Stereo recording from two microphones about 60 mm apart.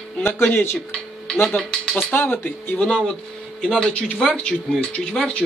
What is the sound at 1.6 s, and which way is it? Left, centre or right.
Speech, centre.